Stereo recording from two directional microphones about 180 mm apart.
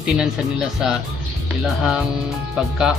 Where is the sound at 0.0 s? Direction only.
5° right (ahead or behind).